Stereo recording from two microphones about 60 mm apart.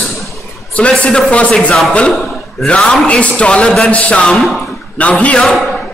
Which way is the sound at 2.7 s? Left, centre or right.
Centre.